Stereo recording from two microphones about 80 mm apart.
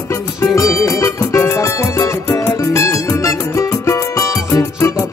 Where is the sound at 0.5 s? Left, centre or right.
Left.